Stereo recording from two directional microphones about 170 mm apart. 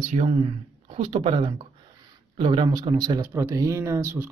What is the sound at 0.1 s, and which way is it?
Speech, 40° right (ahead or behind).